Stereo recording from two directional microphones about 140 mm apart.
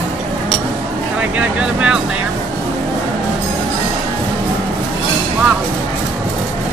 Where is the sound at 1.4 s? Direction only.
10° right (ahead or behind).